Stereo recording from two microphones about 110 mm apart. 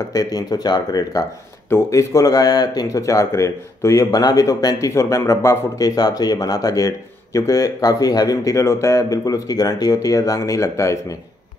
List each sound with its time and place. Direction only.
0.1 s speech: 35° left (ahead or behind)